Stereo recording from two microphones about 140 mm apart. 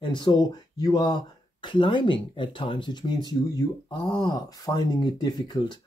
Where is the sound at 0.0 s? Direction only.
35° left (ahead or behind).